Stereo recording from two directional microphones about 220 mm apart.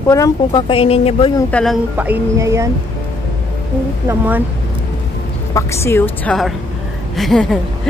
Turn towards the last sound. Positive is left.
turn(degrees=0)  # may be behind; listen again after turning